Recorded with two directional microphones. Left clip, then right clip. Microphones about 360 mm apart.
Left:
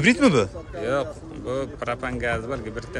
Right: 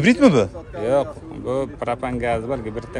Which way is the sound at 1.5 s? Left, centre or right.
Centre.